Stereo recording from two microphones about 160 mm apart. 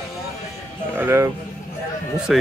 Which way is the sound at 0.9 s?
15° right (ahead or behind).